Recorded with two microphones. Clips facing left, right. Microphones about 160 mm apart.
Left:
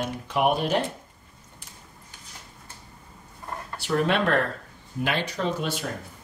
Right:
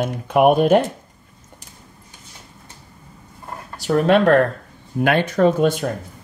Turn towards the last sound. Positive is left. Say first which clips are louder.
# right 12 dB
turn(degrees=-50)  # may be behind; listen again after turning